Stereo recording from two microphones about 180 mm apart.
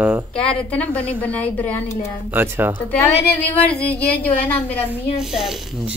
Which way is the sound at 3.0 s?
10° left (ahead or behind).